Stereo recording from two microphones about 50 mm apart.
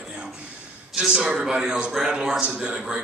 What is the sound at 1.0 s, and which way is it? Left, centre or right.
A man's voice, centre.